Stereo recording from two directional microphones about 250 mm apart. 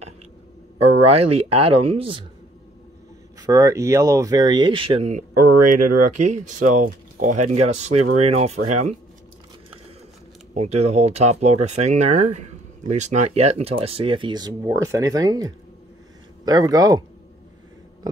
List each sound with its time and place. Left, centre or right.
0.7 s speech: right
3.3 s speech: centre
5.8 s speech: right
6.2 s speech: right
10.5 s speech: right